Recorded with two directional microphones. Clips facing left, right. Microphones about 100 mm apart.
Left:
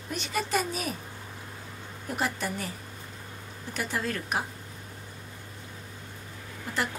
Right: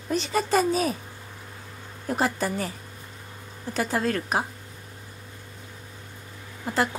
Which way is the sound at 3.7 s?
35° right (ahead or behind).